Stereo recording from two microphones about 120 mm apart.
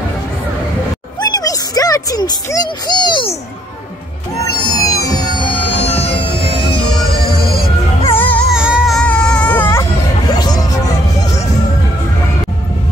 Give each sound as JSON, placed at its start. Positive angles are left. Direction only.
{"t": 1.2, "sound": "music", "side_deg": 30}
{"t": 4.5, "sound": "music", "side_deg": 30}
{"t": 5.4, "sound": "music", "side_deg": 50}
{"t": 8.0, "sound": "music", "side_deg": 15}
{"t": 8.5, "sound": "music", "side_deg": -5}
{"t": 8.9, "sound": "baby cry", "side_deg": 10}
{"t": 10.2, "sound": "music", "side_deg": 35}